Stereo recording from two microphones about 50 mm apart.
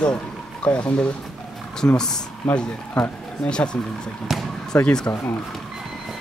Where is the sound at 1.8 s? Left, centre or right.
Left.